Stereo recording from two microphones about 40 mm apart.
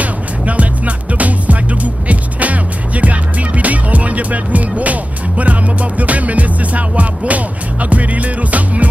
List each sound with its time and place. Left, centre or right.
0.0 s music: right